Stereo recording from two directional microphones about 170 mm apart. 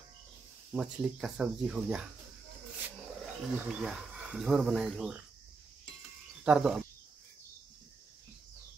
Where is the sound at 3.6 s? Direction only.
5° right (ahead or behind).